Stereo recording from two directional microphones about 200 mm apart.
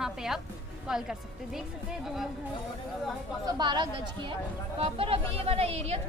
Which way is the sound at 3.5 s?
20° right (ahead or behind).